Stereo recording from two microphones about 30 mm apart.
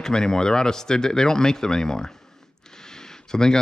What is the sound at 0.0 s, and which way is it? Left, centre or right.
Speech, left.